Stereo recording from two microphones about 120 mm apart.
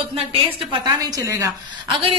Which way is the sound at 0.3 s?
40° right (ahead or behind).